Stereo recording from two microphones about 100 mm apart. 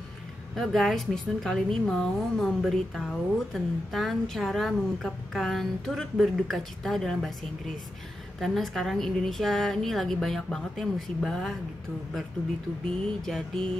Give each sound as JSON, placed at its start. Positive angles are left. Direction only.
{"t": 0.6, "sound": "a woman's voice", "side_deg": 0}
{"t": 8.4, "sound": "a woman's voice", "side_deg": 0}
{"t": 13.0, "sound": "a woman's voice", "side_deg": 5}